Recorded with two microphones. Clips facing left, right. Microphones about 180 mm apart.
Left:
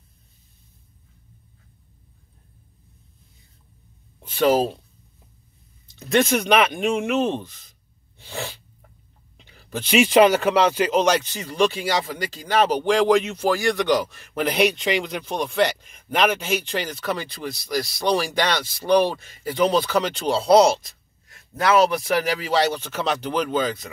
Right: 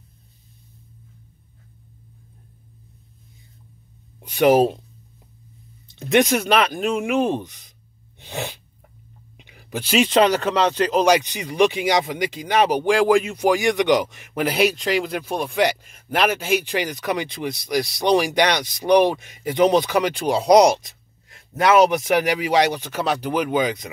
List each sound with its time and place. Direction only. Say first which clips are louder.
4.2 s speech: right 3 dB; 20° right (ahead or behind)
5.9 s speech: right 2 dB; 20° right (ahead or behind)
8.2 s sneeze: right 2 dB; 20° right (ahead or behind)
9.4 s a sound: right 1 dB; 15° right (ahead or behind)
9.8 s speech: left 2 dB; 5° left (ahead or behind)
11.0 s speech: right 5 dB; 10° right (ahead or behind)
14.4 s speech: right 1 dB; 5° right (ahead or behind)